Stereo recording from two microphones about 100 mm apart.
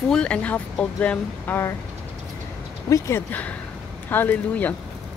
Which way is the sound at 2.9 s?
30° left (ahead or behind).